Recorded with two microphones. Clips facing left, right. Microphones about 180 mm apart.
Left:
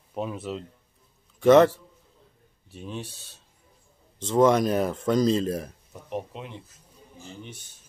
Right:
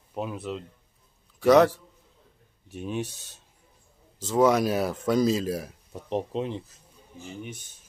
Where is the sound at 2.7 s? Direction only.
10° right (ahead or behind).